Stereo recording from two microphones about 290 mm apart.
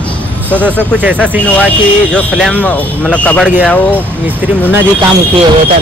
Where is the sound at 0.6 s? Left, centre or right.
Centre.